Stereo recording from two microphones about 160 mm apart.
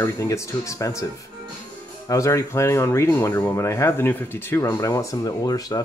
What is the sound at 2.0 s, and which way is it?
Speech, 20° left (ahead or behind).